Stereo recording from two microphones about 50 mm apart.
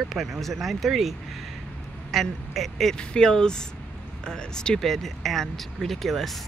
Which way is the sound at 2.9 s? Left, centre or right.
Centre.